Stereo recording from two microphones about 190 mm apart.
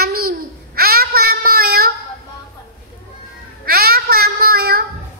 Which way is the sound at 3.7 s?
55° right (ahead or behind).